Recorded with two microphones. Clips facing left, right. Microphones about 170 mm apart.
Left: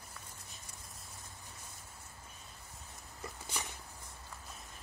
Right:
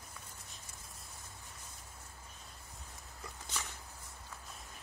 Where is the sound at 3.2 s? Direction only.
15° left (ahead or behind).